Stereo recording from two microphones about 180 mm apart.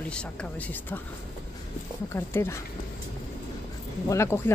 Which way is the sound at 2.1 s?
15° left (ahead or behind).